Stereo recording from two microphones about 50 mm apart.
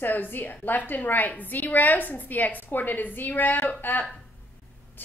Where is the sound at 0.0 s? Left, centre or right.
Left.